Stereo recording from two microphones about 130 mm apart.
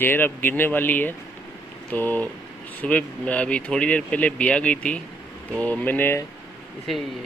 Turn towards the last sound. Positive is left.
turn(degrees=0)  # may be behind; listen again after turning